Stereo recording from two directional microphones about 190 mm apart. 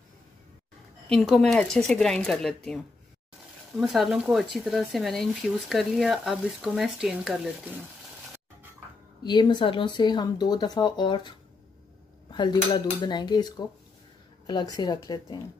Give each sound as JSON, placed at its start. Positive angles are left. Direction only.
{"t": 1.0, "sound": "speech", "side_deg": 0}
{"t": 3.8, "sound": "speech", "side_deg": 0}
{"t": 9.2, "sound": "speech", "side_deg": 25}